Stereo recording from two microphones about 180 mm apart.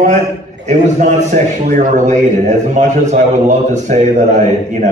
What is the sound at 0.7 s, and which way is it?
A man's voice, 40° right (ahead or behind).